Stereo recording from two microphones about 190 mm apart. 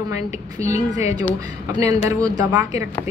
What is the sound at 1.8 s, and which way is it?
A woman's voice, 15° right (ahead or behind).